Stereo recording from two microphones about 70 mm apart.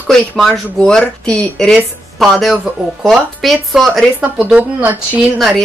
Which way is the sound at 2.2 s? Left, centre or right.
Centre.